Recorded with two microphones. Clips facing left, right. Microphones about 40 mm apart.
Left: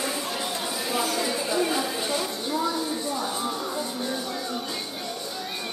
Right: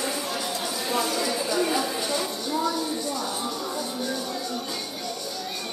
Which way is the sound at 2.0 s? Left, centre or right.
Centre.